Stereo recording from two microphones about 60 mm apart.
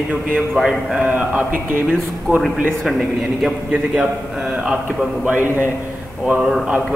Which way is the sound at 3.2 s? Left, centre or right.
Centre.